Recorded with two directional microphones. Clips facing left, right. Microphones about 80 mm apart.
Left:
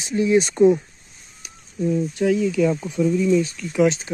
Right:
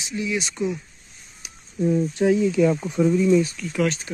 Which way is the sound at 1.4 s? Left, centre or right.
Centre.